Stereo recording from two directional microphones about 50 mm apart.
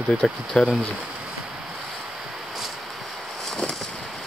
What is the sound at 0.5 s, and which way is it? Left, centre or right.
Speech, left.